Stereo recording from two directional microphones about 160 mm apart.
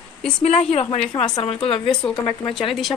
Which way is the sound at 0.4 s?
40° left (ahead or behind).